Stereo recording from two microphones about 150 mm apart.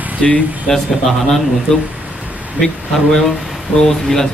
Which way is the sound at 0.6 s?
5° left (ahead or behind).